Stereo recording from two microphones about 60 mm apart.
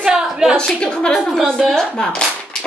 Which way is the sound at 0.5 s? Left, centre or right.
Centre.